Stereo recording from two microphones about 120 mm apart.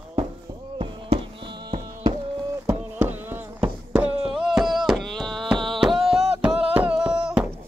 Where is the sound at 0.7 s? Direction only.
50° right (ahead or behind).